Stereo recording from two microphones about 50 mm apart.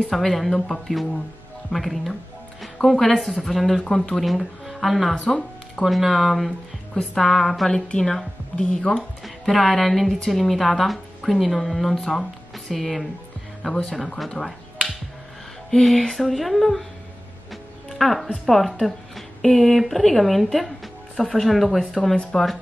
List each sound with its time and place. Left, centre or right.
0.1 s a woman's voice: centre
8.5 s speech: centre
9.2 s speech: centre
14.3 s finger snapping: centre
15.7 s speech: centre
20.5 s music: centre
21.3 s a woman's voice: centre
22.1 s speech: centre